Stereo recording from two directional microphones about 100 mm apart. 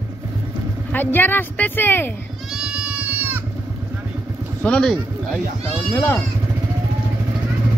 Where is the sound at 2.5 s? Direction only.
10° right (ahead or behind).